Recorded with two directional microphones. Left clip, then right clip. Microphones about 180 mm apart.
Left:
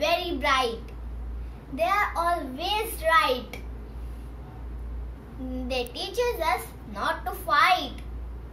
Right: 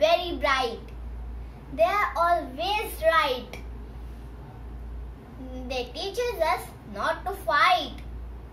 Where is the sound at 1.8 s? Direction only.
15° right (ahead or behind).